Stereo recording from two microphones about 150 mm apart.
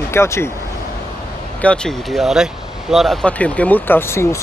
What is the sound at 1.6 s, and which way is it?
Speech, 5° left (ahead or behind).